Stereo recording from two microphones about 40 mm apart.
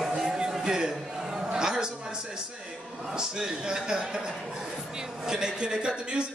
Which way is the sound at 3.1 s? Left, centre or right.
Centre.